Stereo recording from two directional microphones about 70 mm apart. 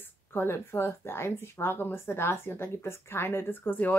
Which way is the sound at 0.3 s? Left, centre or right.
Left.